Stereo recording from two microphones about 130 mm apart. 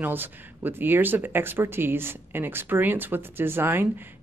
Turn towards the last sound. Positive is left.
turn(degrees=-15)  # may be behind; listen again after turning